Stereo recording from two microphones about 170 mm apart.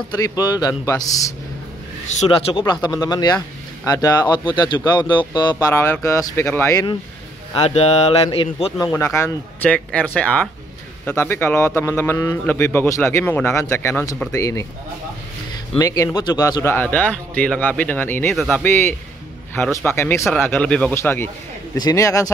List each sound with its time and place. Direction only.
0.2 s speech: 25° left (ahead or behind)
2.2 s a man's voice: 30° left (ahead or behind)
7.5 s speech: 35° left (ahead or behind)
8.9 s a man's voice: 15° left (ahead or behind)
15.8 s a man's voice: 20° left (ahead or behind); by 18.6 s centre (ahead or behind)
18.6 s a man's voice: 15° left (ahead or behind)